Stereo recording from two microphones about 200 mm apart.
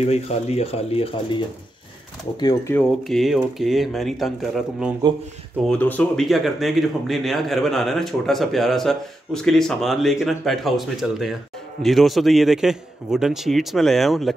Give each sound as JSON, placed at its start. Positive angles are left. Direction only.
{"t": 0.0, "sound": "speech", "side_deg": 30}
{"t": 2.4, "sound": "speech", "side_deg": 15}
{"t": 3.0, "sound": "speech", "side_deg": 0}